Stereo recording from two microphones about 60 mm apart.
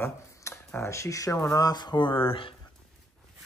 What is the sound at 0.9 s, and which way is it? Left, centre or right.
Speech, left.